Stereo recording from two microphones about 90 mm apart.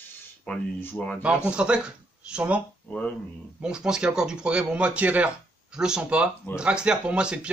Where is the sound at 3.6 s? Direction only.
10° right (ahead or behind).